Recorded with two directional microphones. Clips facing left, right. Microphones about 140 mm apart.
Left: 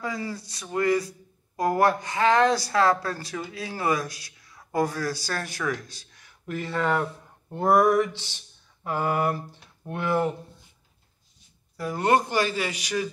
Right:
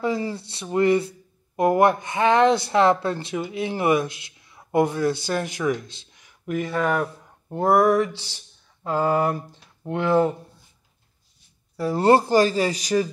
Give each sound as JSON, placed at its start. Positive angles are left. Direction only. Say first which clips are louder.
{"t": 0.0, "sound": "speech", "louder": "right 7 dB", "side_deg": -25}
{"t": 7.4, "sound": "mantra", "louder": "right 3 dB", "side_deg": -15}
{"t": 8.0, "sound": "a sound", "louder": "right 1 dB", "side_deg": 15}
{"t": 8.8, "sound": "speech", "louder": "right 4 dB", "side_deg": -20}
{"t": 11.8, "sound": "speech", "louder": "right 5 dB", "side_deg": -30}